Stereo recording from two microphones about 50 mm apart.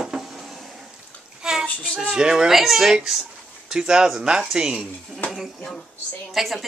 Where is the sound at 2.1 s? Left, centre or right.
Centre.